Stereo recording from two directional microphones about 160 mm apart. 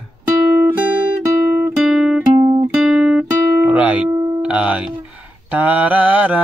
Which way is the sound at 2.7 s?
Centre (ahead or behind).